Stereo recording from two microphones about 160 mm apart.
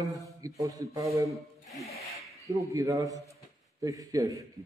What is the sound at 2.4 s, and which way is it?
A man's voice, 20° right (ahead or behind).